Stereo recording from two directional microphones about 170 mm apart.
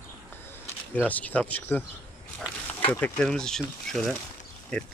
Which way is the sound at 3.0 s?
5° left (ahead or behind).